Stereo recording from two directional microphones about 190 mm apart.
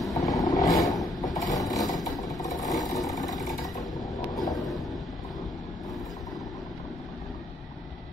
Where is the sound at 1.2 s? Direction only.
20° left (ahead or behind).